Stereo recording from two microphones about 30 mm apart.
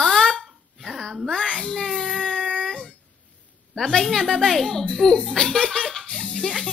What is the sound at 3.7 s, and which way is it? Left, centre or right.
A child's voice, left.